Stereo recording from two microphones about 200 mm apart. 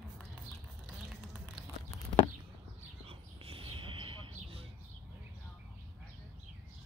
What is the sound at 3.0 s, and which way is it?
Bird, 30° right (ahead or behind).